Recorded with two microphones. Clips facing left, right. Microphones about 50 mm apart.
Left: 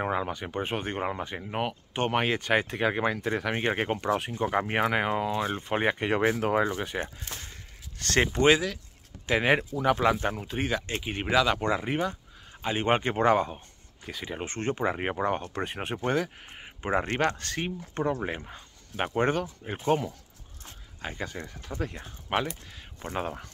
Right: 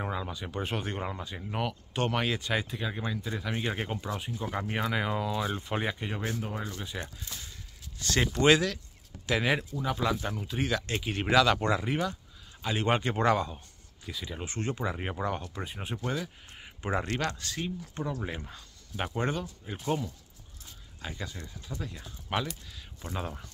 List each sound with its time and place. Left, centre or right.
0.0 s speech: left
4.5 s speech: left
5.9 s speech: left
7.0 s speech: left
8.2 s speech: left
9.8 s speech: left
10.2 s speech: left
10.9 s speech: left
16.4 s speech: left